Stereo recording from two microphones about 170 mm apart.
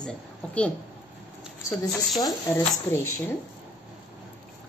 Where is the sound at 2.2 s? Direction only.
15° left (ahead or behind).